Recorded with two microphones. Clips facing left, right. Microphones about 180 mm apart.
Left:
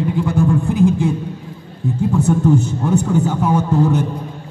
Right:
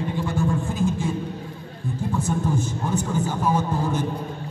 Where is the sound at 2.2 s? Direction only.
65° left (ahead or behind).